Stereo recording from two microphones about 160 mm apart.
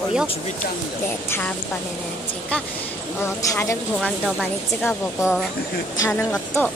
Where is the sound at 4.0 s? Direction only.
Centre (ahead or behind).